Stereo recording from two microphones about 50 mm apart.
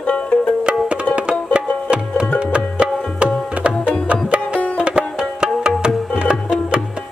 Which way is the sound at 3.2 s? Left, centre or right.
Right.